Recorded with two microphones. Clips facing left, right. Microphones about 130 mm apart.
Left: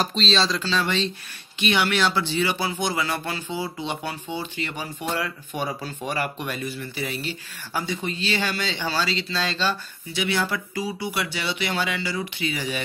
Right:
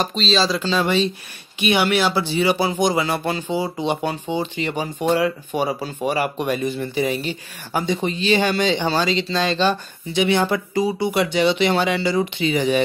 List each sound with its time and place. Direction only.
0.0 s speech: centre (ahead or behind)
0.6 s speech: 15° right (ahead or behind)